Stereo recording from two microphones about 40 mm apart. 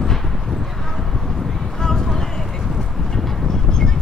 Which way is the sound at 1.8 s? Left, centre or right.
Centre.